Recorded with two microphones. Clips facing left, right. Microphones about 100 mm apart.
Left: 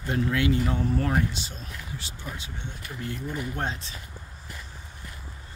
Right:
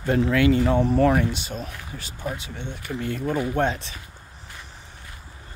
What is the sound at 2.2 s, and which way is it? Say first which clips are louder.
Speech: right 10 dB; 60° right (ahead or behind).